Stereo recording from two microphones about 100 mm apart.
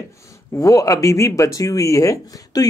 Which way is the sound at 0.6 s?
35° left (ahead or behind).